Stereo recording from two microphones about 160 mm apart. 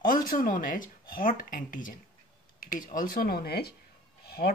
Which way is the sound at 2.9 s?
60° left (ahead or behind).